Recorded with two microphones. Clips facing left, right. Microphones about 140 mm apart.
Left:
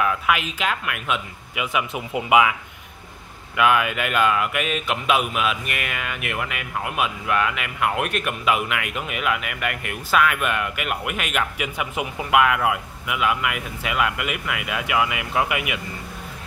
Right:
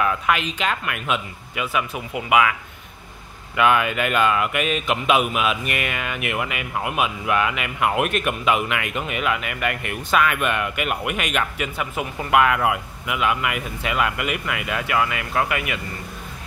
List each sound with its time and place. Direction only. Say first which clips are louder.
0.0 s speech: right 1 dB; 5° left (ahead or behind)
1.6 s speech: even; 15° left (ahead or behind)
3.5 s speech: right 1 dB; 5° left (ahead or behind)
12.3 s speech: right 1 dB; centre (ahead or behind)